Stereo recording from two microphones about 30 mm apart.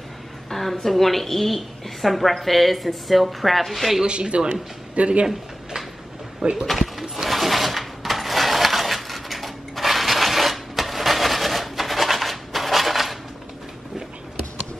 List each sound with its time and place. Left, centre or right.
0.5 s a woman's voice: centre
4.0 s speech: right
4.9 s speech: right
6.7 s a sound: centre